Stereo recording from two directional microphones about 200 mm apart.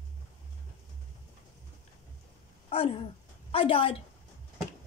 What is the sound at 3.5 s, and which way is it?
Speech, 25° left (ahead or behind).